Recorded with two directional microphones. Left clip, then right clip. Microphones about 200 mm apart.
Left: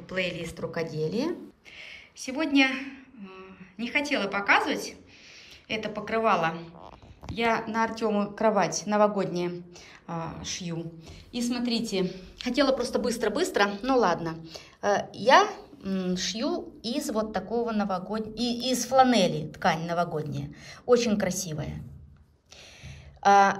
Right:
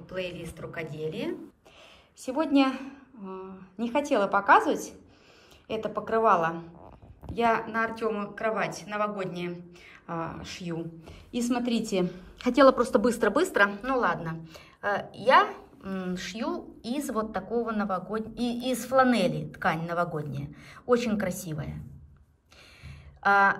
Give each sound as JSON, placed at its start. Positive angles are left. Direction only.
{"t": 0.1, "sound": "a woman's voice", "side_deg": 0}
{"t": 0.5, "sound": "speech", "side_deg": 15}
{"t": 1.8, "sound": "a sound", "side_deg": -50}
{"t": 2.2, "sound": "a woman's voice", "side_deg": -10}
{"t": 10.0, "sound": "a woman's voice", "side_deg": 0}
{"t": 23.2, "sound": "a woman's voice", "side_deg": 5}